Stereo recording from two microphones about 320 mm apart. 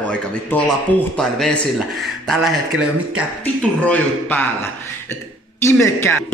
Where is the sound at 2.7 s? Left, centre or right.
Right.